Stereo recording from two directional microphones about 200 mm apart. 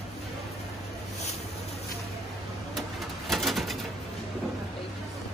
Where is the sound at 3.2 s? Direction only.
Centre (ahead or behind).